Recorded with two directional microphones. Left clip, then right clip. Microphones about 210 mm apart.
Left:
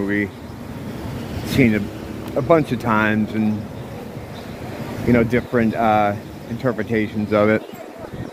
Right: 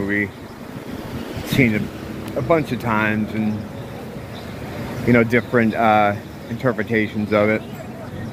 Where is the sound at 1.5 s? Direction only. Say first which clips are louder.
Left 1 dB; 15° left (ahead or behind).